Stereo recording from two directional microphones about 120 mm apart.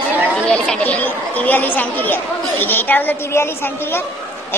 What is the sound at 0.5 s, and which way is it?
Speech, 10° left (ahead or behind).